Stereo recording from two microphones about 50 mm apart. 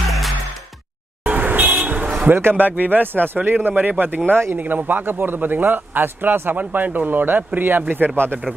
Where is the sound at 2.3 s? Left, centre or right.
Right.